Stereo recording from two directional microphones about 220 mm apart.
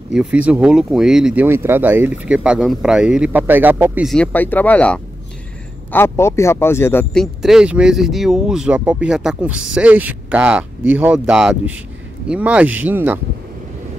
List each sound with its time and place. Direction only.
0.1 s a man's voice: 5° right (ahead or behind)
7.4 s speech: 5° right (ahead or behind)